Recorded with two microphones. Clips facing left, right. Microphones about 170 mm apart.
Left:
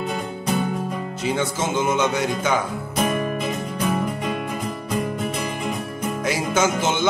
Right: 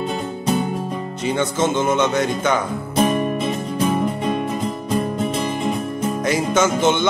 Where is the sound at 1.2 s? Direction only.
5° left (ahead or behind).